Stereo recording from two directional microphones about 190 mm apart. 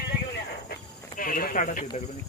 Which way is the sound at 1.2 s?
45° left (ahead or behind).